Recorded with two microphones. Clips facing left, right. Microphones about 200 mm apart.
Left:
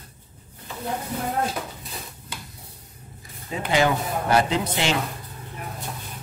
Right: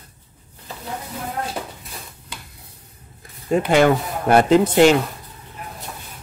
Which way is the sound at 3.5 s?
55° right (ahead or behind).